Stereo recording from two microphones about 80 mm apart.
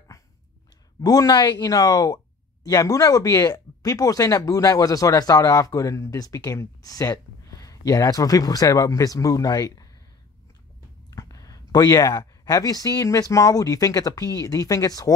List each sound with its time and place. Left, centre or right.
1.0 s speech: left
11.1 s a sound: left
12.4 s speech: left